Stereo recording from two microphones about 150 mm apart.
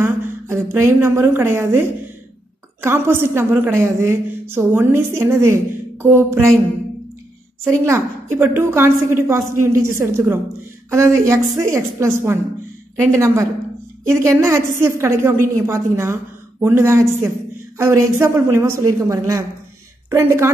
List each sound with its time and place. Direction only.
0.0 s a woman's voice: 20° right (ahead or behind)
7.6 s a woman's voice: 20° right (ahead or behind)